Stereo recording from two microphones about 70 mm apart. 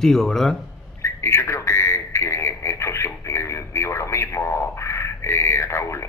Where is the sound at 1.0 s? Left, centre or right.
Left.